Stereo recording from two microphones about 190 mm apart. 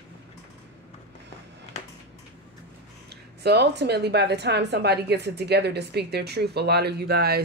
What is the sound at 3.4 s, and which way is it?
Speech, 60° right (ahead or behind).